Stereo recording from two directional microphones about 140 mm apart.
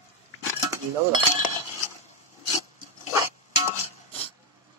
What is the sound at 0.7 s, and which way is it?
Cutlery, 30° right (ahead or behind).